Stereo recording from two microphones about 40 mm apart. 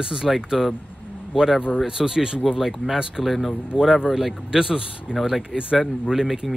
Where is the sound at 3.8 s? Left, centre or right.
Centre.